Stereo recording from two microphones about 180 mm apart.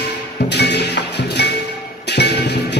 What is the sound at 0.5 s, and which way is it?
Music, 70° left (ahead or behind).